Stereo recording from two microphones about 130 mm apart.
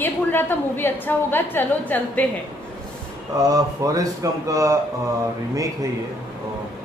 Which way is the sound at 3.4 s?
30° right (ahead or behind).